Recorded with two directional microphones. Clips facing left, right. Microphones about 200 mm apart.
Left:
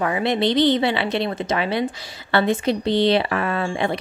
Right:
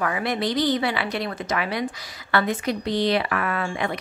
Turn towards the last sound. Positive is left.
turn(degrees=30)  # may be behind; listen again after turning